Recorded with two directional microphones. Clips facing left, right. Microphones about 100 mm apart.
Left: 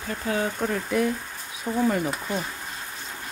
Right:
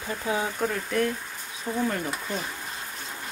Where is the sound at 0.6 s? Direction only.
5° left (ahead or behind).